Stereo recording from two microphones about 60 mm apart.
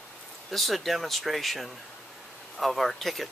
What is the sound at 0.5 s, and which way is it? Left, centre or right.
Speech, centre.